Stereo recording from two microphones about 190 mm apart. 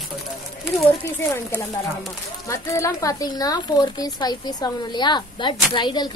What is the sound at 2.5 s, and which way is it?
Speech, 15° left (ahead or behind).